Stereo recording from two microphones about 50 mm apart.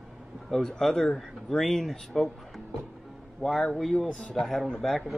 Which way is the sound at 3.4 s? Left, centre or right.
Centre.